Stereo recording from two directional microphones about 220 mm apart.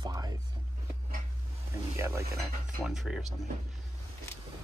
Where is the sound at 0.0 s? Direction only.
15° right (ahead or behind).